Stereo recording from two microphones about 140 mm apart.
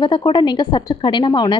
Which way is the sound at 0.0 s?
35° left (ahead or behind).